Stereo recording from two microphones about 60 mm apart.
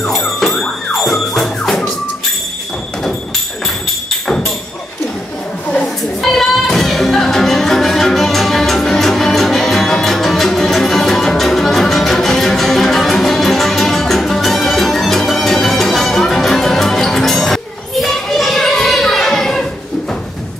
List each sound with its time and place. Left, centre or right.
0.4 s music: centre
6.2 s music: centre
18.0 s children playing: centre